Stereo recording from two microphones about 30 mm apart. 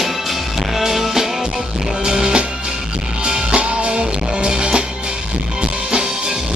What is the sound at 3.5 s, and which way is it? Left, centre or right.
Music, right.